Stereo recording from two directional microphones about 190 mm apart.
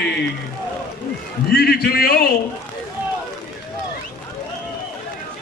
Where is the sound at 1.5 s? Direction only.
55° left (ahead or behind).